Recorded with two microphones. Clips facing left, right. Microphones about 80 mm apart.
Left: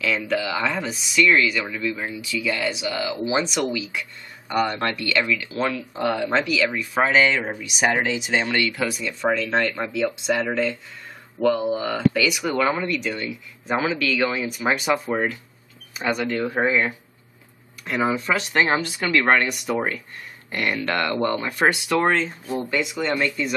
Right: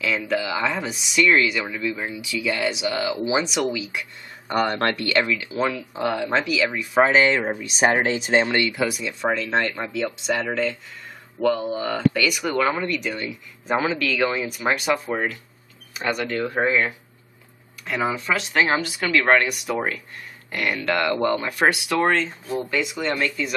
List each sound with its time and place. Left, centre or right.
0.0 s speech: centre
1.1 s speech: centre
4.5 s speech: right
4.7 s speech: right
5.1 s speech: right
5.5 s speech: centre
7.1 s speech: right
8.5 s speech: right
8.7 s speech: centre